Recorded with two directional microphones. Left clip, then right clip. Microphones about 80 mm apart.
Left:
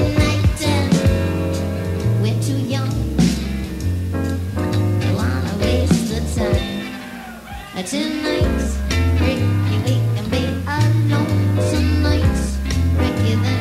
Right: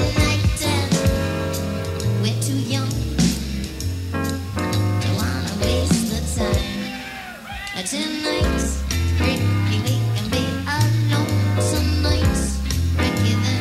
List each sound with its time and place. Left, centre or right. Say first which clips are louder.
0.0 s music: left 2 dB; right
5.9 s music: left 2 dB; right
7.9 s music: left 3 dB; right